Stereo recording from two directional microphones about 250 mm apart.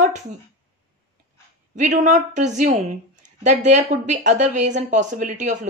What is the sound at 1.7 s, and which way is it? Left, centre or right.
Speech, right.